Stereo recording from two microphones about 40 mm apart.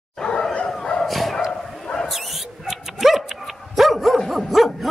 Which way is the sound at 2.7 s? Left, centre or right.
Centre.